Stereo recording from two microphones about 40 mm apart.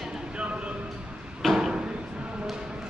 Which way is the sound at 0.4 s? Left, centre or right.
Right.